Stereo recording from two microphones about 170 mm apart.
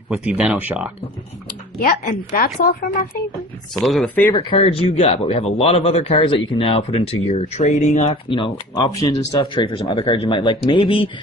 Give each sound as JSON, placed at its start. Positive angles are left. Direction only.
{"t": 0.1, "sound": "speech", "side_deg": -5}
{"t": 1.8, "sound": "a woman's voice", "side_deg": 55}
{"t": 3.7, "sound": "speech", "side_deg": 0}
{"t": 4.4, "sound": "speech", "side_deg": 35}